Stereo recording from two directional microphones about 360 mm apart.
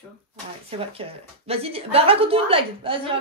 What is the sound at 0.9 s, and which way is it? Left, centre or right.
A woman's voice, centre.